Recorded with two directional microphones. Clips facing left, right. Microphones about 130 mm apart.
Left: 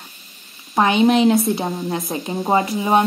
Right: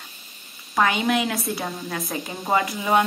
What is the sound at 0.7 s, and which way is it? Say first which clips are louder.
A woman's voice: left 6 dB; 25° left (ahead or behind).